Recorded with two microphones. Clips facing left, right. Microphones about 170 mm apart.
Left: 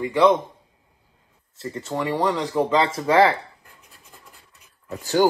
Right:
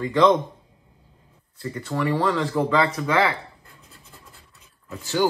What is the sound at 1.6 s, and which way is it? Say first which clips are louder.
Speech: right 1 dB; 20° left (ahead or behind).